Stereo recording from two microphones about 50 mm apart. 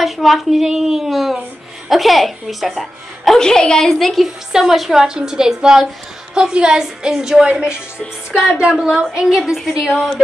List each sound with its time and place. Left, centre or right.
0.0 s a woman's voice: centre
3.3 s a woman's voice: centre
4.5 s a woman's voice: centre
8.5 s a woman's voice: centre
9.1 s a woman's voice: centre